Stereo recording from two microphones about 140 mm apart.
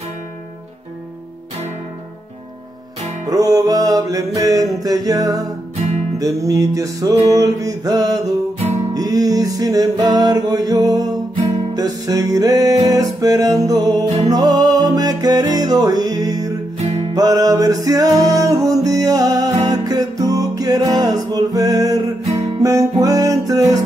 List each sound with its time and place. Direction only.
3.3 s music: 25° right (ahead or behind)
16.7 s music: 55° right (ahead or behind)
17.1 s music: 25° right (ahead or behind)